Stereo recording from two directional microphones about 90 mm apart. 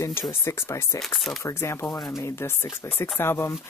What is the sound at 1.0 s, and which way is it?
Speech, 5° left (ahead or behind).